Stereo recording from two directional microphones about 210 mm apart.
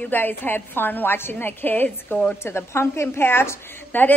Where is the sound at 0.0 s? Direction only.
10° left (ahead or behind).